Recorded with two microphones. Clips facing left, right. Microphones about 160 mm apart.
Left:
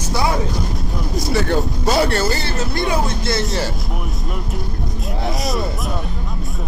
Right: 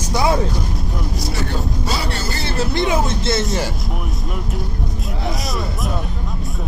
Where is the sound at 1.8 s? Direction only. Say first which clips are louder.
Left 7 dB; 55° left (ahead or behind).